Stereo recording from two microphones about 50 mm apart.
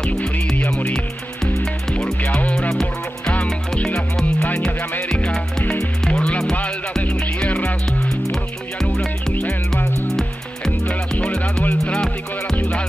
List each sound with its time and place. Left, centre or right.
0.0 s music: centre
10.0 s music: centre
11.1 s music: left